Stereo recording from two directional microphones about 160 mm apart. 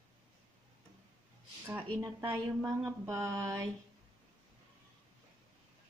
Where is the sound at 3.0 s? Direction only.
20° right (ahead or behind).